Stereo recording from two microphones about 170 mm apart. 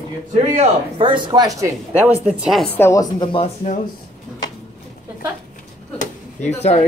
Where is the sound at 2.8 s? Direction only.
20° left (ahead or behind).